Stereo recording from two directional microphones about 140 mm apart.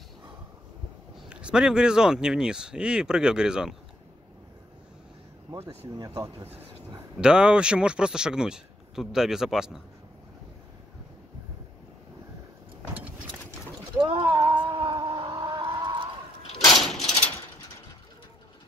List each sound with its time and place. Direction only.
1.3 s speech: 5° right (ahead or behind)
5.9 s speech: 25° right (ahead or behind)
7.2 s speech: 5° right (ahead or behind)
12.9 s a sound: 10° right (ahead or behind)
14.0 s a sound: 35° right (ahead or behind)
16.7 s mechanisms: centre (ahead or behind)